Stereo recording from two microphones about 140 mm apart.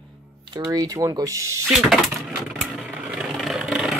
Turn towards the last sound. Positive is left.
turn(degrees=-5)  # may be behind; listen again after turning